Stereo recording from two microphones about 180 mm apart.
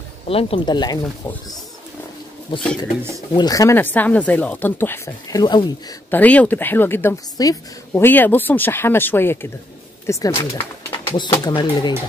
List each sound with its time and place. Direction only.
0.3 s speech: 30° left (ahead or behind)
6.0 s speech: 10° left (ahead or behind); by 11.9 s 25° left (ahead or behind)